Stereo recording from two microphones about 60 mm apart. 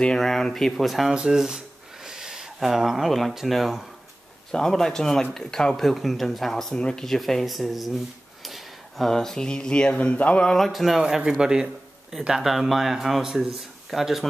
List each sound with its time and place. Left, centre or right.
0.0 s a man's voice: centre
1.0 s speech: centre
6.7 s speech: centre
7.1 s speech: centre; by 10.4 s left
10.4 s a man's voice: centre